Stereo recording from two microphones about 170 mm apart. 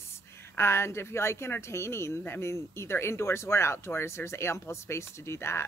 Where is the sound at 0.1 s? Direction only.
15° left (ahead or behind).